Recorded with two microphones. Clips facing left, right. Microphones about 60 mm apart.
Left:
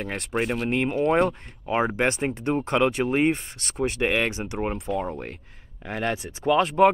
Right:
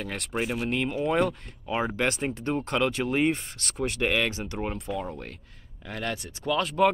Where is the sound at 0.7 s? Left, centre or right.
Left.